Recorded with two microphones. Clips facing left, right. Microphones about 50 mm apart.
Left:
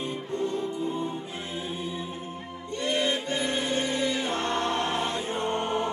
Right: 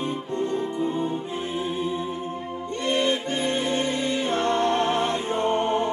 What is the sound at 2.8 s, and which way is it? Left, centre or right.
Music, right.